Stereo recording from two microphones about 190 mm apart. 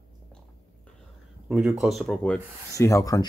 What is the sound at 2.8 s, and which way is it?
Speech, 15° left (ahead or behind).